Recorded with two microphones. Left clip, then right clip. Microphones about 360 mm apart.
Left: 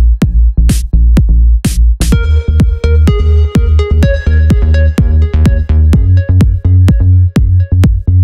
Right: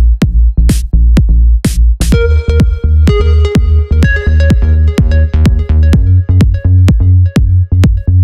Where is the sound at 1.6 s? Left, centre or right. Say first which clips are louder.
Right 1 dB; right.